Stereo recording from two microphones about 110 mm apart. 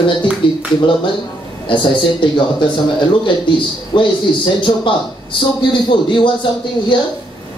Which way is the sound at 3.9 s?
50° left (ahead or behind).